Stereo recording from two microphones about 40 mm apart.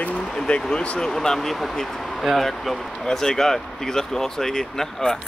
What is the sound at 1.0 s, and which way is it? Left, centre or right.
Speech, centre.